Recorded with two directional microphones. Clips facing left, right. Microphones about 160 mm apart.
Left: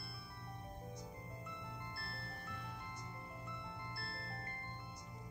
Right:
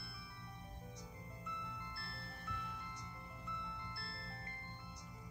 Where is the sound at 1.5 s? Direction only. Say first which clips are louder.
Even; 45° left (ahead or behind).